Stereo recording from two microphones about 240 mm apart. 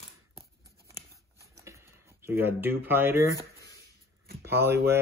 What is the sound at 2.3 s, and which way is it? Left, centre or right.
Speech, centre.